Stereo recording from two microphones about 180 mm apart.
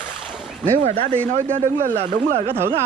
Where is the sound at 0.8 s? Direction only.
35° right (ahead or behind).